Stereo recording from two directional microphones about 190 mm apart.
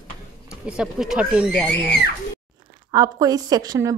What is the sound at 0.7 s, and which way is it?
Speech, 5° right (ahead or behind).